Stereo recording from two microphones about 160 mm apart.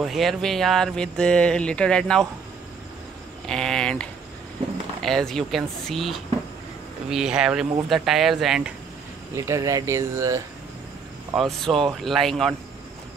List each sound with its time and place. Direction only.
0.0 s speech: centre (ahead or behind)
3.4 s speech: 5° left (ahead or behind)
9.3 s speech: 20° right (ahead or behind)
11.3 s speech: centre (ahead or behind)